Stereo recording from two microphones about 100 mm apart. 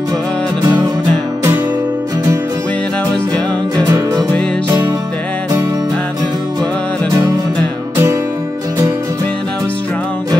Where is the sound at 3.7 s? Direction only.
35° right (ahead or behind).